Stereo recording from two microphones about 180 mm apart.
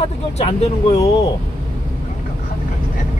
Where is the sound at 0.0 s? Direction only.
35° left (ahead or behind).